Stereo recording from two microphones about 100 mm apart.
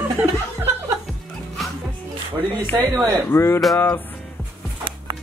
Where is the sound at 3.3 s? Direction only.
25° left (ahead or behind).